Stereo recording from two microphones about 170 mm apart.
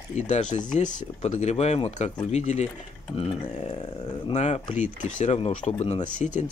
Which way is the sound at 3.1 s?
30° left (ahead or behind).